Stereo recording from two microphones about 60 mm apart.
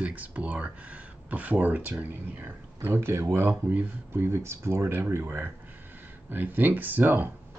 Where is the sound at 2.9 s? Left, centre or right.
Right.